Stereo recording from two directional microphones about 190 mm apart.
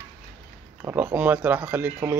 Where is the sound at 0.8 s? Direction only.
10° right (ahead or behind).